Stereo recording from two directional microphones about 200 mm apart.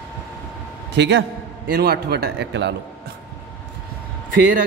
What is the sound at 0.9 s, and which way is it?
A man's voice, 60° right (ahead or behind).